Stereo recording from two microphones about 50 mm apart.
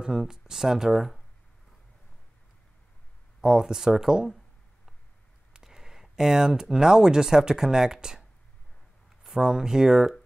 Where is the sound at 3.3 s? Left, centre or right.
Centre.